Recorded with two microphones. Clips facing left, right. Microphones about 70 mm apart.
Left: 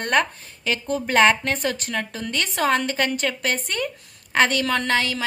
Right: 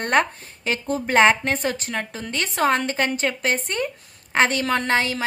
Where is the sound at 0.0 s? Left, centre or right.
Right.